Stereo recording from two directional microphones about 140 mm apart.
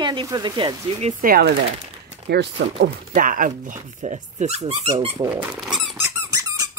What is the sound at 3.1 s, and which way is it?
Speech, 75° right (ahead or behind).